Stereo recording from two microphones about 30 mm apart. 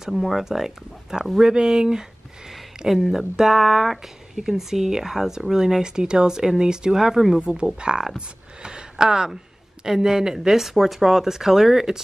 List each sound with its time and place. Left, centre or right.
0.1 s speech: centre
0.5 s speech: centre
3.1 s speech: centre
7.3 s speech: right; by 12.0 s centre